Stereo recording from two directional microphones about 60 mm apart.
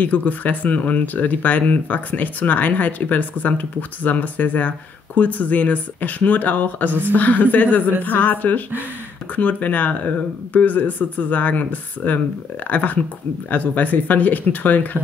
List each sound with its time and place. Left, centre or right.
0.0 s speech: left